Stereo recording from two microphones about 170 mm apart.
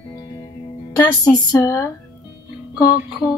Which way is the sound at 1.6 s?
15° left (ahead or behind).